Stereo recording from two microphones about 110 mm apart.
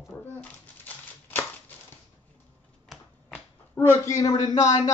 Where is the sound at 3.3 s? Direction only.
25° left (ahead or behind).